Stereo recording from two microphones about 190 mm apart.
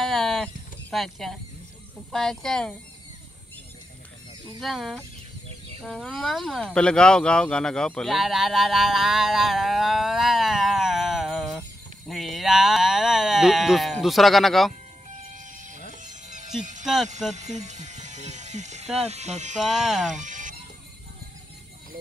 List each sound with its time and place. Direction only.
0.0 s a sound: centre (ahead or behind)
2.1 s speech: centre (ahead or behind)
4.6 s speech: centre (ahead or behind)
15.0 s music: 40° right (ahead or behind)
16.8 s speech: centre (ahead or behind)
17.3 s music: 35° right (ahead or behind)
18.9 s speech: 35° right (ahead or behind)
19.6 s speech: centre (ahead or behind)
20.2 s chicken: 40° right (ahead or behind)